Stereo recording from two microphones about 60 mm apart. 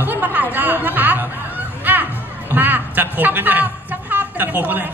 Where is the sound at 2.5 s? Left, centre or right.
Right.